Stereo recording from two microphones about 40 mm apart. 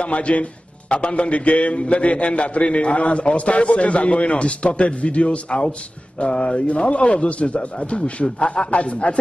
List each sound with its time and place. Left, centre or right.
0.0 s a man's voice: left
6.9 s a man's voice: left